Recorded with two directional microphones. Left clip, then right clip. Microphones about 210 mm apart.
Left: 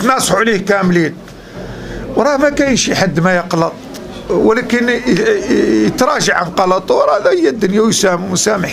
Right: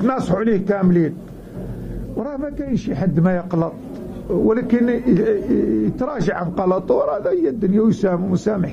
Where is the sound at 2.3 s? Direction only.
10° left (ahead or behind).